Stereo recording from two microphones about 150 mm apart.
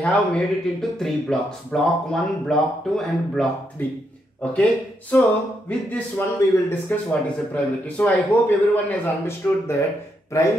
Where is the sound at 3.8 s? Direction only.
10° left (ahead or behind).